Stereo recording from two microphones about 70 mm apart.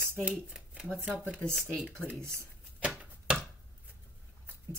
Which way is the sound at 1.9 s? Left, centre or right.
Centre.